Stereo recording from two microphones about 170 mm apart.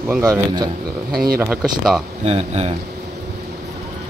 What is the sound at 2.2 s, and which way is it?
Speech, 40° right (ahead or behind).